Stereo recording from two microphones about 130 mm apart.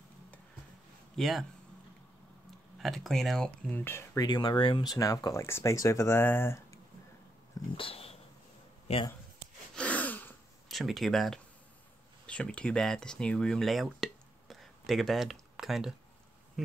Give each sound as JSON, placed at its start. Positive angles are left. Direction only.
{"t": 1.1, "sound": "speech", "side_deg": 0}
{"t": 2.8, "sound": "speech", "side_deg": 0}
{"t": 4.3, "sound": "speech", "side_deg": 35}
{"t": 4.9, "sound": "speech", "side_deg": 25}
{"t": 7.7, "sound": "dog", "side_deg": 45}
{"t": 8.9, "sound": "speech", "side_deg": 50}
{"t": 9.8, "sound": "a sound", "side_deg": 10}
{"t": 10.7, "sound": "speech", "side_deg": 0}